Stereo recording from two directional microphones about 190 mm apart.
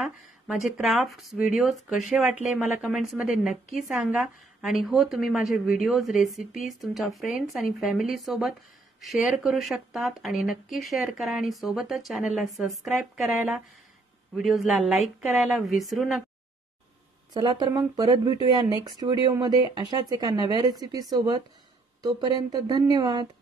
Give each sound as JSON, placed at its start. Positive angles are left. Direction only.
{"t": 0.0, "sound": "speech", "side_deg": 0}
{"t": 14.3, "sound": "speech", "side_deg": 0}
{"t": 17.3, "sound": "speech", "side_deg": -20}